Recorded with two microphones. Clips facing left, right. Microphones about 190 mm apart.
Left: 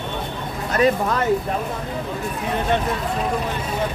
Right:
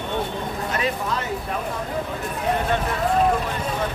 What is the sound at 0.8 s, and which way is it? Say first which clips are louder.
Speech: left 9 dB; 55° left (ahead or behind).